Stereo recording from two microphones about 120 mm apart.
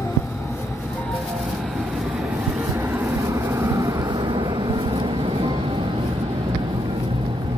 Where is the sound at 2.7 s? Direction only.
15° right (ahead or behind); by 5.9 s 45° right (ahead or behind).